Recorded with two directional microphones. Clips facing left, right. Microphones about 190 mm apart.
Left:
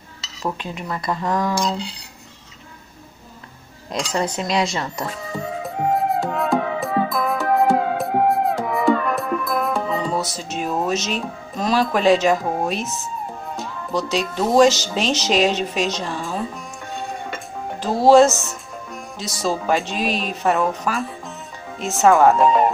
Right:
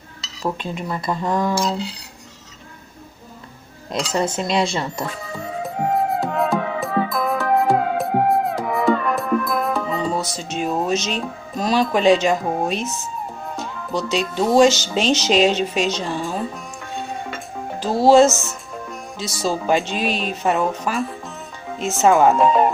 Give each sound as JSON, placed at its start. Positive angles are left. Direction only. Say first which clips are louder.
{"t": 0.8, "sound": "speech", "louder": "even", "side_deg": -25}
{"t": 1.6, "sound": "speech", "louder": "right 1 dB", "side_deg": -5}
{"t": 4.0, "sound": "speech", "louder": "right 1 dB", "side_deg": -25}
{"t": 5.6, "sound": "music", "louder": "right 1 dB", "side_deg": 0}
{"t": 13.6, "sound": "speech", "louder": "left 1 dB", "side_deg": 0}
{"t": 17.7, "sound": "speech", "louder": "even", "side_deg": 0}